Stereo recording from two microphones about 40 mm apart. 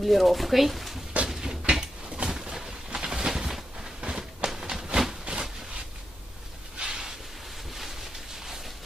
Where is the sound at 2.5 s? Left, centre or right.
Centre.